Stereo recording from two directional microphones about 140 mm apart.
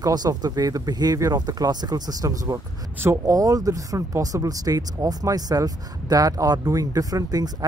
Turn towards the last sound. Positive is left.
turn(degrees=-25)  # may be behind; listen again after turning